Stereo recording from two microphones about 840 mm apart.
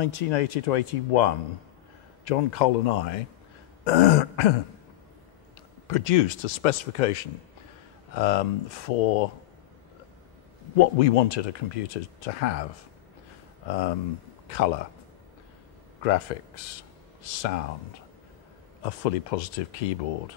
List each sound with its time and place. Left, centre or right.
0.0 s a man's voice: left
5.9 s speech: left
10.8 s speech: left
13.7 s speech: left
16.0 s speech: left
18.8 s speech: left